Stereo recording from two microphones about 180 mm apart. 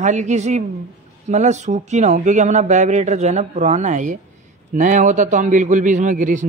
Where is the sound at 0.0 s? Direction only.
40° right (ahead or behind).